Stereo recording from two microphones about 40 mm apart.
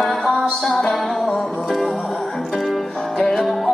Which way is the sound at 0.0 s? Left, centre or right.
Centre.